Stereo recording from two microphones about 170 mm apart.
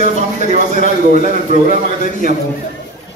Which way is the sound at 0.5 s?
45° right (ahead or behind).